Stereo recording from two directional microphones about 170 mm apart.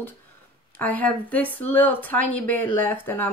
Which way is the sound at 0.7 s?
10° left (ahead or behind).